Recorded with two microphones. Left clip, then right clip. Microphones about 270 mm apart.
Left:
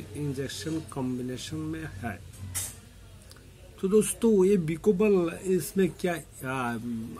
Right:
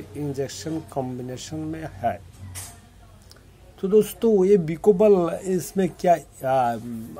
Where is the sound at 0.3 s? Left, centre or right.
Centre.